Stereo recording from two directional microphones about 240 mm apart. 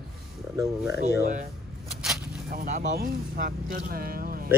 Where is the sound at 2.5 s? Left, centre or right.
Right.